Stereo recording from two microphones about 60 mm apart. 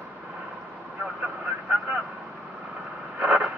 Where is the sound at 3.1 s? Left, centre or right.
Right.